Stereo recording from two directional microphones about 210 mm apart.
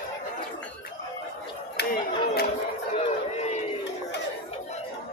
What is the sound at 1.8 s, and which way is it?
Chatter, 50° left (ahead or behind).